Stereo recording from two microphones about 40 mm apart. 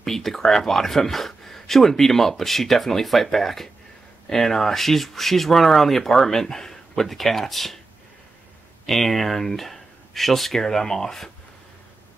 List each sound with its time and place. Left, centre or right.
0.0 s speech: centre
8.8 s speech: centre